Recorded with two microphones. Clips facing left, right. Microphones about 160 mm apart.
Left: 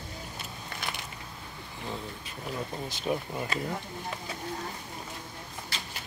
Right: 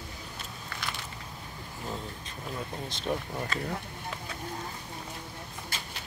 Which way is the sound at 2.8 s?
5° left (ahead or behind).